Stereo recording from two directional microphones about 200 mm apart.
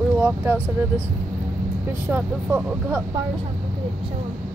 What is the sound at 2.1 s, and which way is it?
Speech, 10° right (ahead or behind).